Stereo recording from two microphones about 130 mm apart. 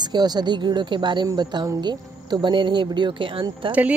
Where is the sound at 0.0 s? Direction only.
30° right (ahead or behind).